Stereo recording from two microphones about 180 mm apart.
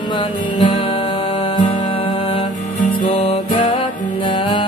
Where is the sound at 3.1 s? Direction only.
30° left (ahead or behind).